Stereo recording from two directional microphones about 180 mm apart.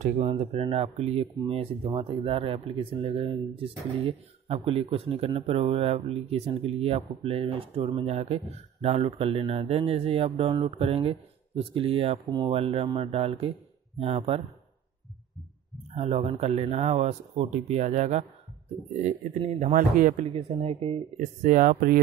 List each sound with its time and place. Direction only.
0.0 s speech: 35° right (ahead or behind)
15.9 s speech: 35° right (ahead or behind)
20.3 s speech: 35° right (ahead or behind); by 22.0 s 55° right (ahead or behind)